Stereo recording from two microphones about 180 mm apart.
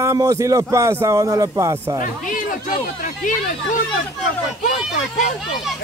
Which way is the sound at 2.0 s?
45° left (ahead or behind).